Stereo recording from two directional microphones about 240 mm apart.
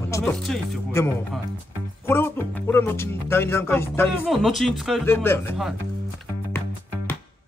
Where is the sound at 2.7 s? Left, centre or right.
Centre.